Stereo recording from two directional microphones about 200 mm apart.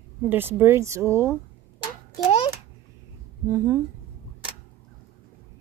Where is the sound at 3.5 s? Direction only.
15° right (ahead or behind).